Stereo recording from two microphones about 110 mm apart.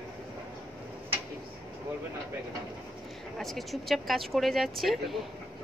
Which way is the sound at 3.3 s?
Centre (ahead or behind).